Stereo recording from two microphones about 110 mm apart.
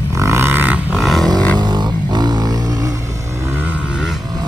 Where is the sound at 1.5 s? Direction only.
40° right (ahead or behind).